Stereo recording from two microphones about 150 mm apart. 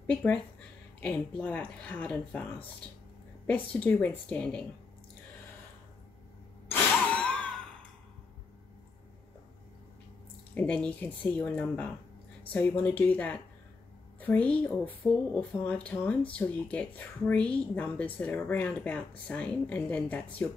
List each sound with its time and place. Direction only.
0.0 s speech: 10° left (ahead or behind)
3.4 s speech: 10° left (ahead or behind)
6.7 s a sound: 10° left (ahead or behind)
10.5 s speech: 10° left (ahead or behind)